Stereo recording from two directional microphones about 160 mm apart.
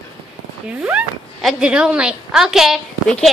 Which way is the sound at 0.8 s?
5° right (ahead or behind).